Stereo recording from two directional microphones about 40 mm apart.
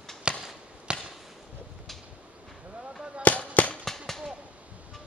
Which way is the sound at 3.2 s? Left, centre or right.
Left.